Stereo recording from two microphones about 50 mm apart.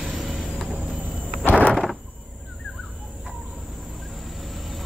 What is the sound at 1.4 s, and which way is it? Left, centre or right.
Sliding door, left.